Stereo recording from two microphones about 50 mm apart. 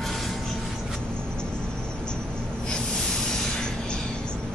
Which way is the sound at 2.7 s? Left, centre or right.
Centre.